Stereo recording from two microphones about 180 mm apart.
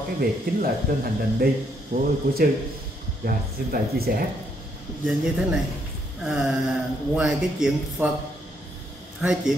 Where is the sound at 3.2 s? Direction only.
55° right (ahead or behind).